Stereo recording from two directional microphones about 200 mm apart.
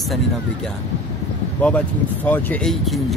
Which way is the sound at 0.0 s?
Centre (ahead or behind).